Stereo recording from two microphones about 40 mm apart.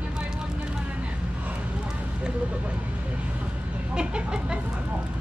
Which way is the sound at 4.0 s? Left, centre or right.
Right.